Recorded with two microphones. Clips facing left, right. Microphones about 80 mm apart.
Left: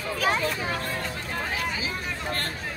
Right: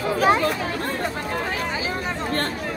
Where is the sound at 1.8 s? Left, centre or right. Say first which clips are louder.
Right 5 dB; right.